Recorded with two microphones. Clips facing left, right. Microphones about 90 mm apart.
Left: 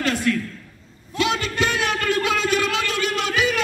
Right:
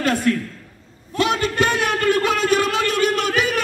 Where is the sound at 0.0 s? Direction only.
45° right (ahead or behind).